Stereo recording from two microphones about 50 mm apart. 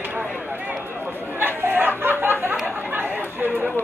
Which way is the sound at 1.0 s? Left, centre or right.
Right.